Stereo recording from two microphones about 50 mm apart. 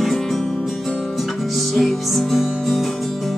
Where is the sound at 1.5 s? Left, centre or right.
Centre.